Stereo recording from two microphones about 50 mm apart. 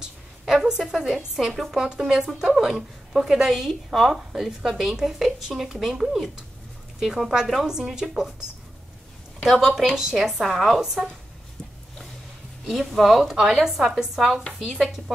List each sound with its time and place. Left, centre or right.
0.0 s a sound: centre
1.5 s speech: centre
1.8 s a woman's voice: centre
9.4 s a woman's voice: centre
12.6 s speech: centre